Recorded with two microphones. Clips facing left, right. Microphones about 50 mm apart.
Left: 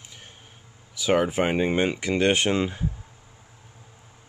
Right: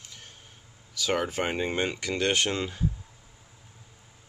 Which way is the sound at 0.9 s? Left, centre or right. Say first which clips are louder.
Left 6 dB; centre.